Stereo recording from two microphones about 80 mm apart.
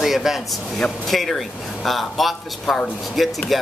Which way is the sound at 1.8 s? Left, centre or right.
Centre.